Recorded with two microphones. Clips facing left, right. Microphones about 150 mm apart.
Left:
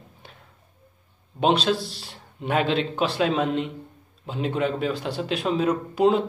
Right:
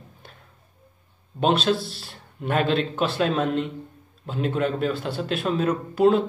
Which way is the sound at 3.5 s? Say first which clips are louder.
Right 1 dB; 50° right (ahead or behind).